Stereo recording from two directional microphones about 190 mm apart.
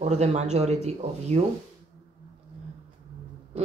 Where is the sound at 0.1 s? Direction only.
35° right (ahead or behind).